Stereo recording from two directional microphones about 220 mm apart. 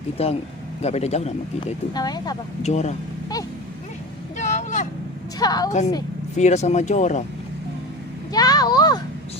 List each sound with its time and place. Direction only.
0.2 s speech: 30° left (ahead or behind)
2.6 s speech: 30° left (ahead or behind)
4.4 s vehicle: 35° left (ahead or behind)
5.4 s a woman's voice: 15° left (ahead or behind)
6.3 s speech: 30° left (ahead or behind)
8.3 s a sound: 15° left (ahead or behind)